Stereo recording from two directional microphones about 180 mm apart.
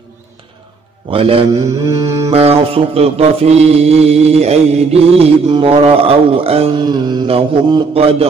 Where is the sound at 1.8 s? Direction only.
20° right (ahead or behind).